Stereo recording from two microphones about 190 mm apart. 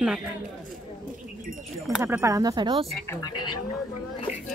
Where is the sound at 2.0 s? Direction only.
15° right (ahead or behind).